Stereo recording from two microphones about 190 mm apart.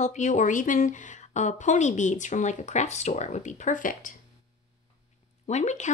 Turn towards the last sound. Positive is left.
turn(degrees=40)  # may be behind; listen again after turning